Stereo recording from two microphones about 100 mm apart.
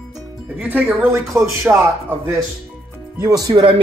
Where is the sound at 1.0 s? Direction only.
30° right (ahead or behind).